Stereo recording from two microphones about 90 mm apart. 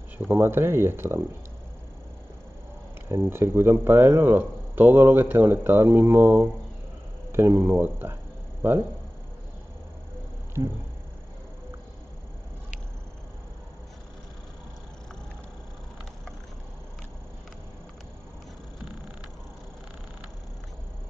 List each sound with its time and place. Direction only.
0.3 s speech: 25° right (ahead or behind)
3.1 s speech: 25° right (ahead or behind)